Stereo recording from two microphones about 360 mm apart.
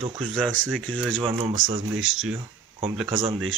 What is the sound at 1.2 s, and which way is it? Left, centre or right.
Speech, centre.